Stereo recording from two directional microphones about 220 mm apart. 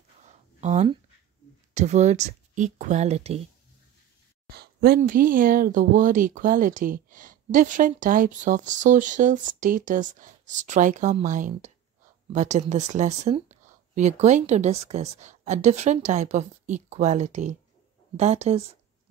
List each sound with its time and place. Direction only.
0.2 s a sound: 30° right (ahead or behind)
1.7 s speech: 30° right (ahead or behind)
4.5 s speech: 45° right (ahead or behind); by 18.7 s 30° right (ahead or behind)